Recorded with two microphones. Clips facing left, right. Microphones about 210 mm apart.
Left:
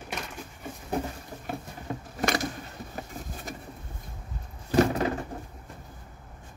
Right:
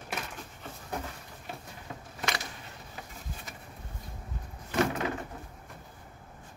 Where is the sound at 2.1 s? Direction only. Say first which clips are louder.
Left 8 dB; 45° left (ahead or behind).